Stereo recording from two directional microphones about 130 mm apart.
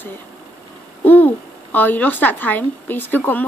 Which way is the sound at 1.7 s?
15° left (ahead or behind).